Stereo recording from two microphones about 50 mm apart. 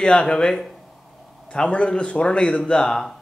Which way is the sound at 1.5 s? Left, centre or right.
Left.